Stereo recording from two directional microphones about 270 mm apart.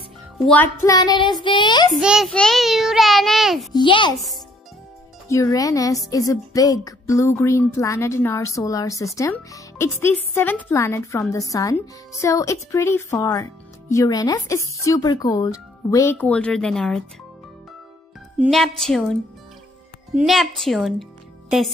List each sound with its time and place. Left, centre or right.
0.5 s speech: centre
2.0 s child singing: centre
3.7 s speech: centre
5.3 s speech: centre
18.4 s child singing: centre